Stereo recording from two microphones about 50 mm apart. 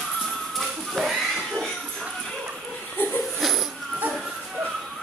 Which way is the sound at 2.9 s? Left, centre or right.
Left.